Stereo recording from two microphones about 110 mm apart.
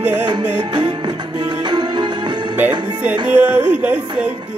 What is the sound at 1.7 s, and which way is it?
Music, 40° right (ahead or behind).